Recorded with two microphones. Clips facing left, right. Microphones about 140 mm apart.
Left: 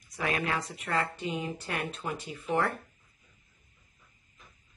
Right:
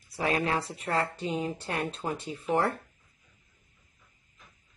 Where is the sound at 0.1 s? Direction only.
35° right (ahead or behind).